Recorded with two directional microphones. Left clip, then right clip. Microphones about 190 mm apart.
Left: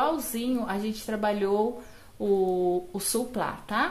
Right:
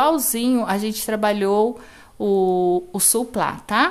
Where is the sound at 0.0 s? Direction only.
30° right (ahead or behind).